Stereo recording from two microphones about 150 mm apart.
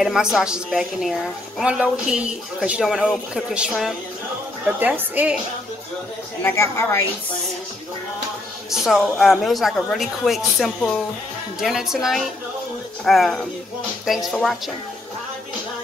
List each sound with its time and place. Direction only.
0.0 s a woman's voice: centre (ahead or behind)
6.4 s a woman's voice: 15° left (ahead or behind)
8.6 s a woman's voice: centre (ahead or behind)